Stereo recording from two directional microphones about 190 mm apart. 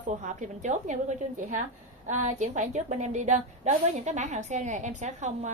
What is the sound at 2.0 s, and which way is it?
A woman's voice, 40° right (ahead or behind).